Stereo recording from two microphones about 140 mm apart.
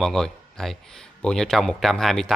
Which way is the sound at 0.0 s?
5° left (ahead or behind).